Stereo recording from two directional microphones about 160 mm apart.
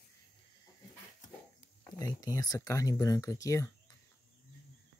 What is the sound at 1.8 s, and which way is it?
Speech, 25° left (ahead or behind).